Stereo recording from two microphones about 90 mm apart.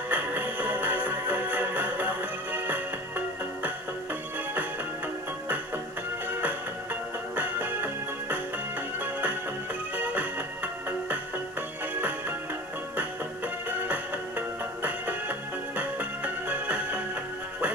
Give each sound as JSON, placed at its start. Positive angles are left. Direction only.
{"t": 0.1, "sound": "music", "side_deg": -20}
{"t": 6.4, "sound": "music", "side_deg": -20}
{"t": 9.9, "sound": "music", "side_deg": -15}
{"t": 13.7, "sound": "music", "side_deg": -20}